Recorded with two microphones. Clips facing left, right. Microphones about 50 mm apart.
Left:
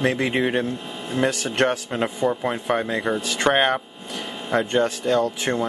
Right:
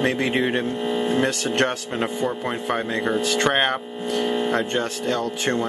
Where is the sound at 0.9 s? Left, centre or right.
Right.